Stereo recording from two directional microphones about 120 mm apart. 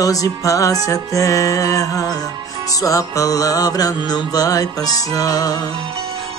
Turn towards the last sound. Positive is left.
turn(degrees=30)  # may be behind; listen again after turning